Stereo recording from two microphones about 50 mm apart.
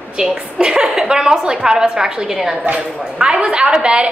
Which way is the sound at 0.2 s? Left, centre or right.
Centre.